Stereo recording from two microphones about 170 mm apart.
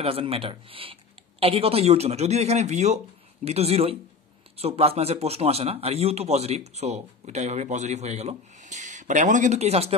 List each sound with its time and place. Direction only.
0.0 s a man's voice: 35° right (ahead or behind)